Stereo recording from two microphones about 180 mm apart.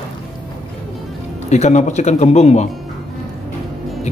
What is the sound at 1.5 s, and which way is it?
Speech, 40° left (ahead or behind).